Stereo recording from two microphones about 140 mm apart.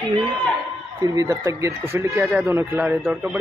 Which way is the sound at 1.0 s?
25° right (ahead or behind).